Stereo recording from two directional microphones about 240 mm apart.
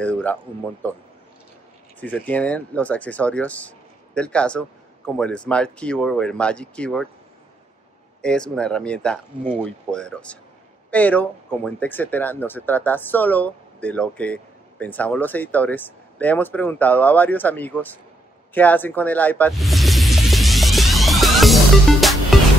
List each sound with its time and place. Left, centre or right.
0.0 s speech: centre
2.0 s speech: centre
8.2 s speech: centre
18.5 s music: centre